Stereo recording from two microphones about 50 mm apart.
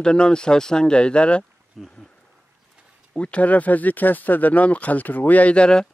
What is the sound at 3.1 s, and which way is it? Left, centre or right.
Speech, left.